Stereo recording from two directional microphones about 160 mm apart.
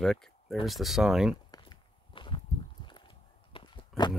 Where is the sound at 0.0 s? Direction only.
Centre (ahead or behind).